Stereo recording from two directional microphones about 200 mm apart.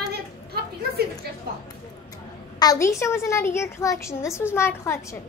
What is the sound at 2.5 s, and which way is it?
A woman's voice, 15° left (ahead or behind).